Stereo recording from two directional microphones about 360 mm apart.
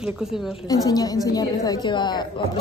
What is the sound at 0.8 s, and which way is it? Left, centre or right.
A woman's voice, centre.